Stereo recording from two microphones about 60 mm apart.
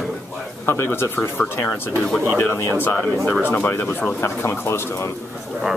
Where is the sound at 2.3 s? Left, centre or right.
Left.